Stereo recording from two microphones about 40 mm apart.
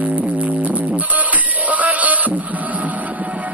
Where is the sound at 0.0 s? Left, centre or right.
Right.